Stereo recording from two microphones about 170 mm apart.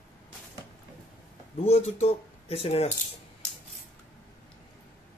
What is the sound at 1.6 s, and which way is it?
Speech, 35° left (ahead or behind).